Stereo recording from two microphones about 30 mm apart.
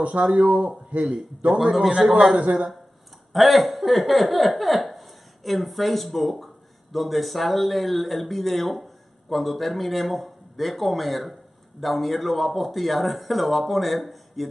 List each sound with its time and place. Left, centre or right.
0.2 s a man's voice: right
2.3 s speech: right
3.3 s speech: centre